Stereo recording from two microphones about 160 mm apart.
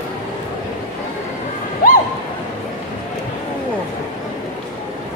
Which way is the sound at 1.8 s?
65° left (ahead or behind).